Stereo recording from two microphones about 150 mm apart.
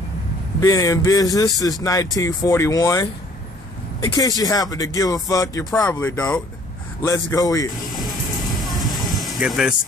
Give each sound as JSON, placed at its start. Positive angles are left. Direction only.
{"t": 0.6, "sound": "speech", "side_deg": 25}
{"t": 4.4, "sound": "speech", "side_deg": 25}
{"t": 5.8, "sound": "speech", "side_deg": 10}
{"t": 7.1, "sound": "speech", "side_deg": 20}
{"t": 7.9, "sound": "train", "side_deg": 0}
{"t": 9.2, "sound": "speech", "side_deg": 0}